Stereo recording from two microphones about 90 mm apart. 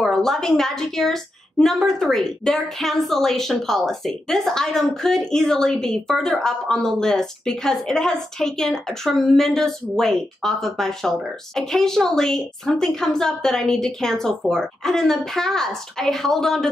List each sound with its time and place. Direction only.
0.0 s a woman's voice: 5° left (ahead or behind)